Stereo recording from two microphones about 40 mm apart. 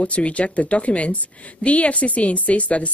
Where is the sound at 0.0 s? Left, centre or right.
Left.